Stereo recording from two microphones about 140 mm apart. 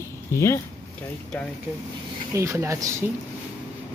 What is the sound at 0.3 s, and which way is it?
Speech, 20° left (ahead or behind).